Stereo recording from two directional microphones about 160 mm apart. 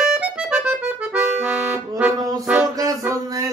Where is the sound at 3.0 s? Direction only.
20° right (ahead or behind).